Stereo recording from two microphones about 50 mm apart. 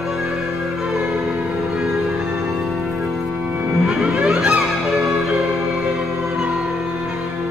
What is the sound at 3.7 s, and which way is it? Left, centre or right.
Music, centre.